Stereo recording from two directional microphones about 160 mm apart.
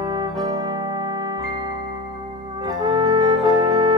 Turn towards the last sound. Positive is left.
turn(degrees=-25)  # may be behind; listen again after turning